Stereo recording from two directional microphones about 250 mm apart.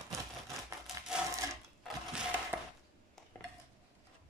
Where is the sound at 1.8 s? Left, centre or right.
Centre.